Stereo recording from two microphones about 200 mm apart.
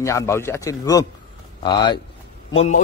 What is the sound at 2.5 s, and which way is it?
Speech, 35° left (ahead or behind).